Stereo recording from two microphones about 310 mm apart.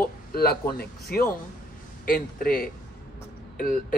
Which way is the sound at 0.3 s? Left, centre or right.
Left.